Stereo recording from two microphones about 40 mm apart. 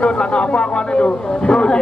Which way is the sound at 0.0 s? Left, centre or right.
Left.